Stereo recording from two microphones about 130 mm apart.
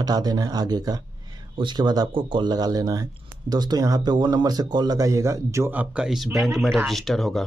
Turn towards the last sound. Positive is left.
turn(degrees=5)  # may be behind; listen again after turning